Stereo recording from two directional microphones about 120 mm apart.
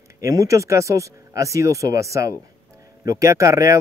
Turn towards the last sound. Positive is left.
turn(degrees=-25)  # may be behind; listen again after turning